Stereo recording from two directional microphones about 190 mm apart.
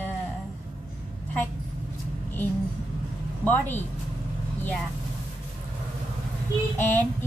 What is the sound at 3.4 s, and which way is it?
Speech, 10° left (ahead or behind).